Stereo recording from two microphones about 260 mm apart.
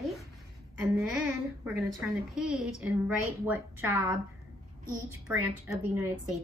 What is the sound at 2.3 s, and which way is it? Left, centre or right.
A woman's voice, centre.